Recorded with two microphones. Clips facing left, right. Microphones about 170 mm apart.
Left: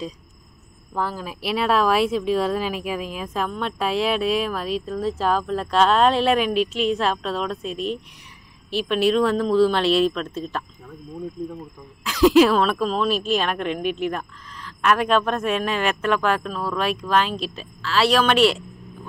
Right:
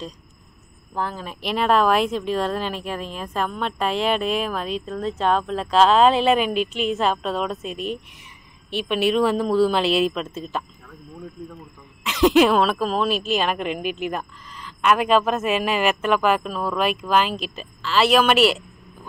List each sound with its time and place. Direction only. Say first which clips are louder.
0.9 s speech: left 1 dB; 5° left (ahead or behind)
10.9 s speech: left 5 dB; 20° left (ahead or behind)
12.0 s speech: left 1 dB; centre (ahead or behind)